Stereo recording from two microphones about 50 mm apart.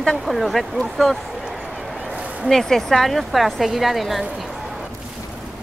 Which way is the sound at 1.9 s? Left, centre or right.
Right.